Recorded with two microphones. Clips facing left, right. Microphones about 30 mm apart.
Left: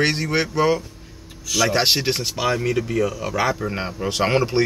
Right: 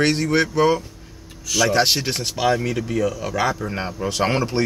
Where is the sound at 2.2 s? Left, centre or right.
Centre.